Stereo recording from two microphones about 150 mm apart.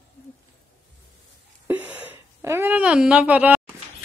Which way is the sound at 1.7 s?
10° right (ahead or behind).